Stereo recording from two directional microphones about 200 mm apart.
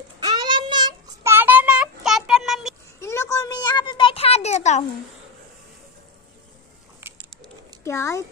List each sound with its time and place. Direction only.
0.2 s child singing: 20° right (ahead or behind); by 2.7 s centre (ahead or behind)
3.0 s a sound: 15° left (ahead or behind); by 4.8 s 35° left (ahead or behind)
7.8 s speech: 15° left (ahead or behind)